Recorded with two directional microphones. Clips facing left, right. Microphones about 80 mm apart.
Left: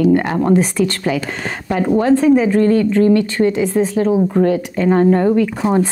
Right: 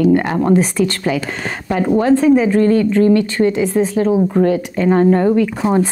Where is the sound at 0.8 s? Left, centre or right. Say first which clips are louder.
Even; centre.